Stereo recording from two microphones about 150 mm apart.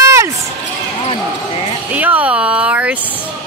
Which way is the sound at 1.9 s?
10° right (ahead or behind).